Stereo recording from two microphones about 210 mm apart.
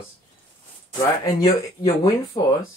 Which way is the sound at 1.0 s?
15° left (ahead or behind).